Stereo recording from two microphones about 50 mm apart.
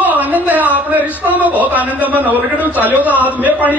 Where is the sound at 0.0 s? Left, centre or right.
Right.